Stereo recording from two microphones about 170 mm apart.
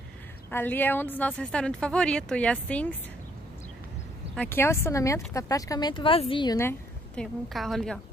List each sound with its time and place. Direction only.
0.5 s speech: 10° left (ahead or behind)
4.4 s speech: 15° left (ahead or behind)
6.6 s a sound: 15° left (ahead or behind)
7.4 s a woman's voice: centre (ahead or behind)